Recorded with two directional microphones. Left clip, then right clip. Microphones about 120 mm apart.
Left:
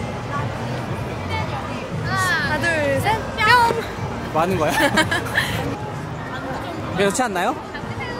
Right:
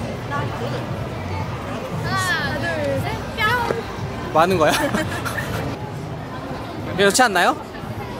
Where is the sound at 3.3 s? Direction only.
5° left (ahead or behind).